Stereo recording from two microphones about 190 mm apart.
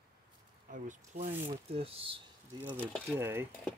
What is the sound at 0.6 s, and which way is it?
Speech, 40° right (ahead or behind).